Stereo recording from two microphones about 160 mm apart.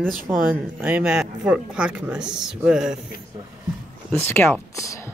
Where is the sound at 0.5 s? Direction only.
10° right (ahead or behind).